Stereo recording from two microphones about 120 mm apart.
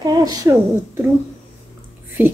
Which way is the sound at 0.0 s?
35° right (ahead or behind).